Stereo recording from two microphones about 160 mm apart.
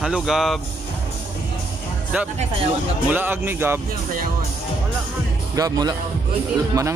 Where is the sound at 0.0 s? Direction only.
5° right (ahead or behind).